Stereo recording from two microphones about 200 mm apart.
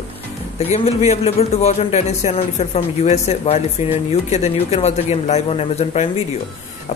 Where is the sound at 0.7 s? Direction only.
30° left (ahead or behind).